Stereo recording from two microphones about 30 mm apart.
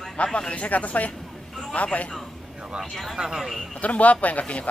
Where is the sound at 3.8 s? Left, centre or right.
Left.